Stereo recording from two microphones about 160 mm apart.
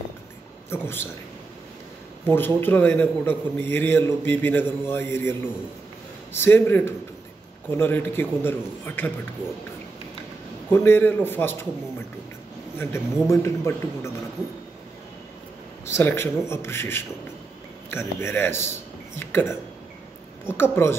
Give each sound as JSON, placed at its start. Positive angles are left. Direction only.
{"t": 0.7, "sound": "a man's voice", "side_deg": 15}
{"t": 2.2, "sound": "a man's voice", "side_deg": 15}
{"t": 6.3, "sound": "a man's voice", "side_deg": 15}
{"t": 10.7, "sound": "a man's voice", "side_deg": 15}
{"t": 12.7, "sound": "a man's voice", "side_deg": 15}
{"t": 15.8, "sound": "a man's voice", "side_deg": 15}